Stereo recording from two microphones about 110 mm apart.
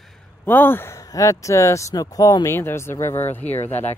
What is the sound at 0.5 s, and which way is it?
Speech, 20° left (ahead or behind).